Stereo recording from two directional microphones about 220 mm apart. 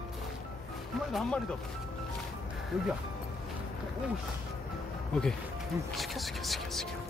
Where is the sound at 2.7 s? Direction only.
Centre (ahead or behind).